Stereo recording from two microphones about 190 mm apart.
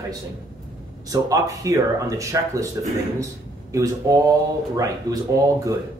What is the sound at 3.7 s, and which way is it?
Speech, 15° right (ahead or behind).